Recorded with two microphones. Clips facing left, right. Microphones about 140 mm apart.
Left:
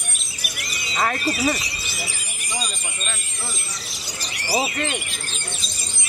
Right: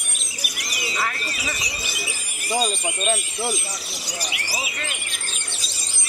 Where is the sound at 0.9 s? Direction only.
40° left (ahead or behind).